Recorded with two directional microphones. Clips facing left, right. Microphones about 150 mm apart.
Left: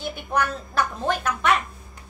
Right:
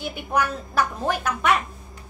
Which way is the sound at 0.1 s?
10° right (ahead or behind).